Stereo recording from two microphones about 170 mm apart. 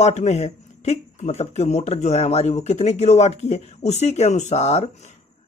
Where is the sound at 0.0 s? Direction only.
40° left (ahead or behind).